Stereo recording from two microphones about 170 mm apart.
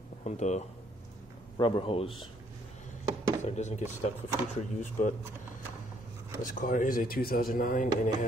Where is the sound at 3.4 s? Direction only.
40° left (ahead or behind).